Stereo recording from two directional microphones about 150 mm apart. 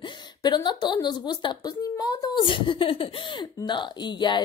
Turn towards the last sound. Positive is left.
turn(degrees=30)  # may be behind; listen again after turning